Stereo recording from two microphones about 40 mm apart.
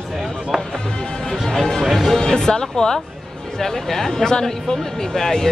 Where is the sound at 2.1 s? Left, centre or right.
Centre.